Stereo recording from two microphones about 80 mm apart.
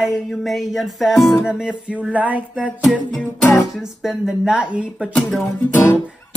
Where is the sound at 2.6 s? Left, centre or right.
Centre.